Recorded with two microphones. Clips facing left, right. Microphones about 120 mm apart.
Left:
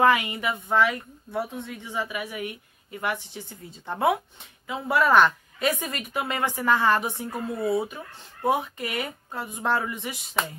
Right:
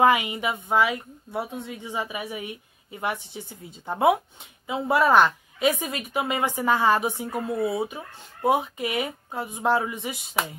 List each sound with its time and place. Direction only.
0.0 s a woman's voice: 15° right (ahead or behind)
5.6 s speech: 5° right (ahead or behind)